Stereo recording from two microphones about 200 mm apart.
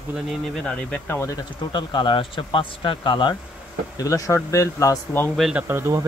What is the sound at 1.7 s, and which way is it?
Speech, 20° left (ahead or behind).